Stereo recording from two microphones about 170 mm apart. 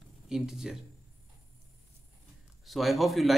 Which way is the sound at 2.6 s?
Centre (ahead or behind).